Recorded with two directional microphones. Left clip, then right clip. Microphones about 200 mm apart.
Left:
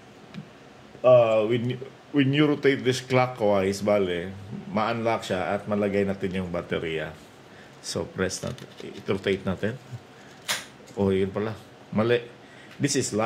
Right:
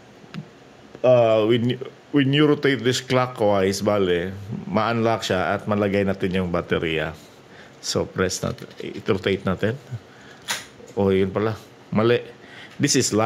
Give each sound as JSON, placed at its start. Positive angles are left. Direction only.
{"t": 1.0, "sound": "speech", "side_deg": -50}
{"t": 11.0, "sound": "speech", "side_deg": -30}